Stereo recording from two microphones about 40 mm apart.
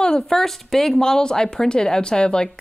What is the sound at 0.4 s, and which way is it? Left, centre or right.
Speech, centre.